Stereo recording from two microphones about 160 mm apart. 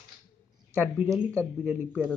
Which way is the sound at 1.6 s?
10° right (ahead or behind).